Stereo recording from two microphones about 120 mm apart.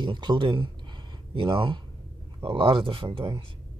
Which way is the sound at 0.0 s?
40° right (ahead or behind).